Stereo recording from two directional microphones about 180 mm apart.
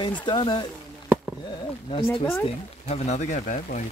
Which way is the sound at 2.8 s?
40° left (ahead or behind).